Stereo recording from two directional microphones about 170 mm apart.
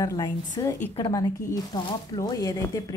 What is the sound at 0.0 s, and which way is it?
Speech, 20° left (ahead or behind).